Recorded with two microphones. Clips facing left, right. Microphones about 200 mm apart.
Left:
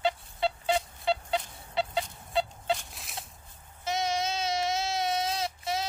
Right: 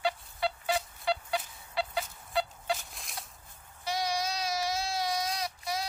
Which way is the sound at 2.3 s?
25° left (ahead or behind).